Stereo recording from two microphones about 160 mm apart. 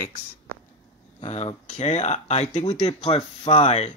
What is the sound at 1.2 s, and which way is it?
Speech, 45° left (ahead or behind).